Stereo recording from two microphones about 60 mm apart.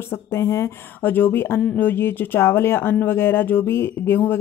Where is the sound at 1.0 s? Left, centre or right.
Left.